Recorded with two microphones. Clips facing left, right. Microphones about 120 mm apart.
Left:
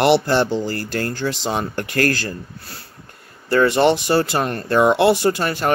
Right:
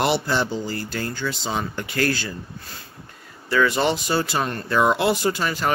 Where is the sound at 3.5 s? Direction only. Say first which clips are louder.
Left 5 dB; 55° left (ahead or behind).